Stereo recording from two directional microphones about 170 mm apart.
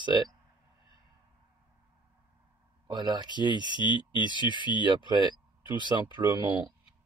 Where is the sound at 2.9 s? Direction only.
25° right (ahead or behind).